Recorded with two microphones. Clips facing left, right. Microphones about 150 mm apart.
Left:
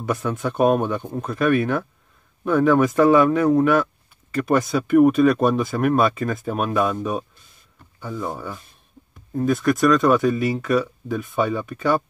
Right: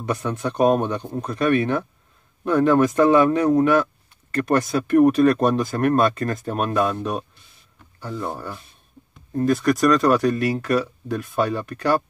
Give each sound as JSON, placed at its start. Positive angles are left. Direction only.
{"t": 0.0, "sound": "speech", "side_deg": 5}